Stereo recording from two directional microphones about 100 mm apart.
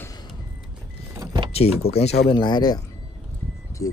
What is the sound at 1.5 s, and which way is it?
Speech, 90° left.